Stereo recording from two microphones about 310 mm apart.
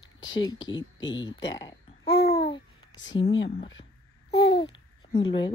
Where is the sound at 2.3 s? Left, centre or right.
Centre.